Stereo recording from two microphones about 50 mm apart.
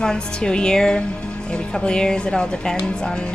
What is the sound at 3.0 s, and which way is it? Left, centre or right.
Speech, centre.